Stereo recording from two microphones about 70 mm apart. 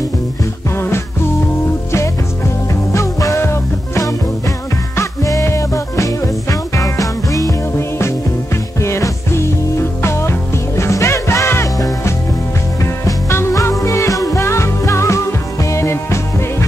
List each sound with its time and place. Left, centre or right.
0.7 s music: left
2.9 s music: left
8.8 s music: left
13.0 s music: left